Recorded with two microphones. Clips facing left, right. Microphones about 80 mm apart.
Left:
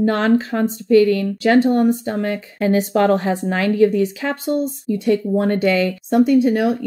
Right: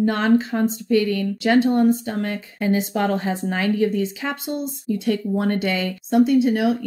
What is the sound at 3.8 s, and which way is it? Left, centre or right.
Speech, left.